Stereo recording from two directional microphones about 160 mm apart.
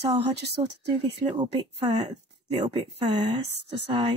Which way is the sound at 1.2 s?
30° right (ahead or behind).